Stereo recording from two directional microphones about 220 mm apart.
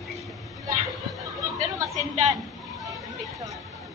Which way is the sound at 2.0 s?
30° right (ahead or behind).